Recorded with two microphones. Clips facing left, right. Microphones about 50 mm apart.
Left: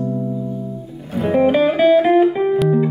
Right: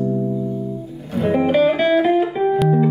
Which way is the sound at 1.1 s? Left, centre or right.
Centre.